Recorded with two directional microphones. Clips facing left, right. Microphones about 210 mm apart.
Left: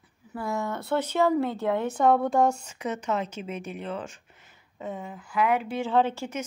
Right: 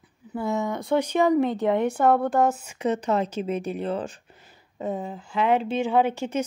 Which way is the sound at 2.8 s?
30° right (ahead or behind).